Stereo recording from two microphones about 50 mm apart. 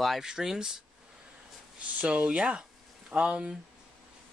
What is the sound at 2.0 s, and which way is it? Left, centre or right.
Speech, right.